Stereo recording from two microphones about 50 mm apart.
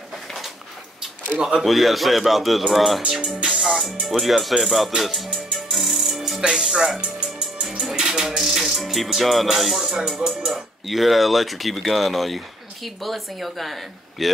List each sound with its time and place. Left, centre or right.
1.4 s speech: centre
3.0 s speech: right
3.6 s speech: centre
4.0 s music: centre
10.9 s speech: centre